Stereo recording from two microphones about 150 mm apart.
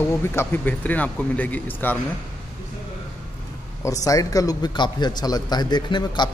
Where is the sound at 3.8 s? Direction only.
25° left (ahead or behind).